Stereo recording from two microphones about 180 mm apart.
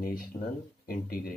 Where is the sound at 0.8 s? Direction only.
55° left (ahead or behind).